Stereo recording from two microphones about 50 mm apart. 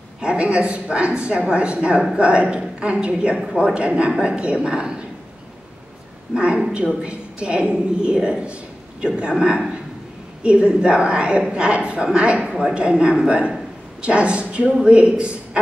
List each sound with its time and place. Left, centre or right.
0.2 s a woman's voice: centre
6.3 s a woman's voice: centre
10.4 s a woman's voice: right